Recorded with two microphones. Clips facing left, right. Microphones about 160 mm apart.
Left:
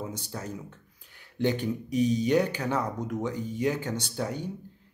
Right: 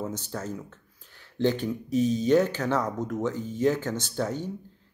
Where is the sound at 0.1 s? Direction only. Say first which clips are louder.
Right 3 dB; 10° left (ahead or behind).